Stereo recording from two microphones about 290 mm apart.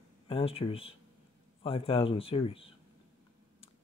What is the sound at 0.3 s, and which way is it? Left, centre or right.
Speech, centre.